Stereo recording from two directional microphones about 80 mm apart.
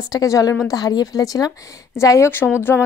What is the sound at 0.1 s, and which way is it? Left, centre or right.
Speech, left.